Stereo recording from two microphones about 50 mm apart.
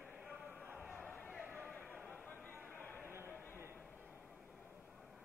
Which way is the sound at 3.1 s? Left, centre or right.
Right.